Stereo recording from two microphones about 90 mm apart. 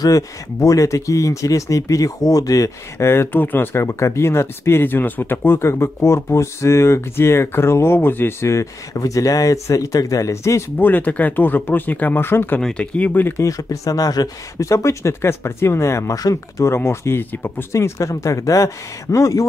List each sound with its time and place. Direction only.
0.0 s speech: 40° left (ahead or behind)
10.8 s speech: 20° left (ahead or behind)
12.5 s speech: 15° left (ahead or behind)
13.4 s speech: 40° left (ahead or behind)